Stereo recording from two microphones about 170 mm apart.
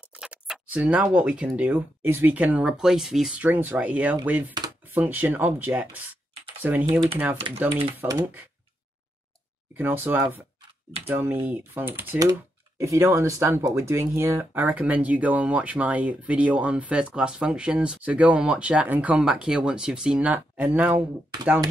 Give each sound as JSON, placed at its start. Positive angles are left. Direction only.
{"t": 0.1, "sound": "speech", "side_deg": -5}
{"t": 6.9, "sound": "speech", "side_deg": -30}
{"t": 8.0, "sound": "speech", "side_deg": -20}
{"t": 9.8, "sound": "speech", "side_deg": -10}